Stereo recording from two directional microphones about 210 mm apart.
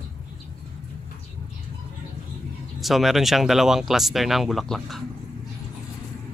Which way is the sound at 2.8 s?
Centre (ahead or behind).